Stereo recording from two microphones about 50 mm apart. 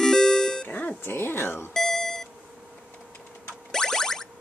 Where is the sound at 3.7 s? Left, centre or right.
Centre.